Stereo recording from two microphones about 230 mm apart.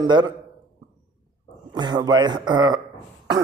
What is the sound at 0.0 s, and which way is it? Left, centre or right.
Speech, centre.